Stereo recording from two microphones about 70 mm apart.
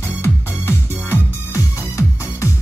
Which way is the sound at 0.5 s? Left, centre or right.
Right.